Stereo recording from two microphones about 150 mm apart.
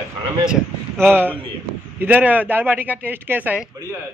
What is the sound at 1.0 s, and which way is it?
Speech, 15° right (ahead or behind).